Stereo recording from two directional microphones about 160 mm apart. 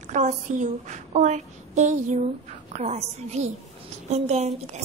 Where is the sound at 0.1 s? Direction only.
50° right (ahead or behind).